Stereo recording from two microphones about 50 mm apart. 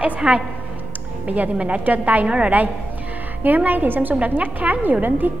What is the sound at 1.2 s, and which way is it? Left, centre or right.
A woman's voice, right.